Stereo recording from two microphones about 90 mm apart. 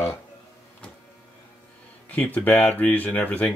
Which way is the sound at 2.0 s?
15° left (ahead or behind).